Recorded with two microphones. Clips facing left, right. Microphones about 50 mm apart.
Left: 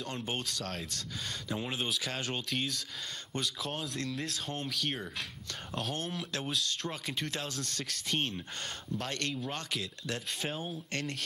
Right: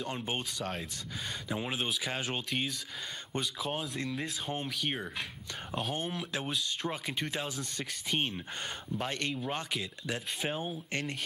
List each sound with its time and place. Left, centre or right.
0.0 s speech: centre